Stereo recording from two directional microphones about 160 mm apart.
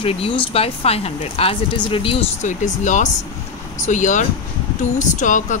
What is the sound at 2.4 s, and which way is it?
Speech, 50° left (ahead or behind).